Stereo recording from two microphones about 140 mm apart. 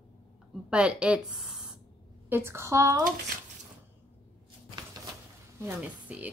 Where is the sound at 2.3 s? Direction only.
20° right (ahead or behind).